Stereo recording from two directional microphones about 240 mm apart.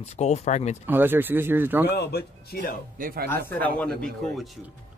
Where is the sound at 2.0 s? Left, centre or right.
Left.